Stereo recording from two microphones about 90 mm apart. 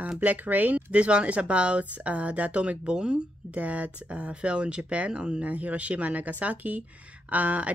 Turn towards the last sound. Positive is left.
turn(degrees=-15)  # may be behind; listen again after turning